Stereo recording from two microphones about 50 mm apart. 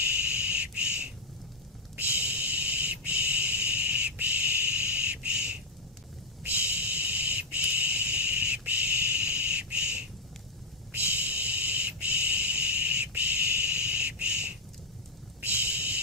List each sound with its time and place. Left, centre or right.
0.0 s a sound: right
2.0 s owl: right
6.4 s owl: right
8.6 s bird: right
10.9 s owl: right
13.1 s bird: right
15.4 s a sound: right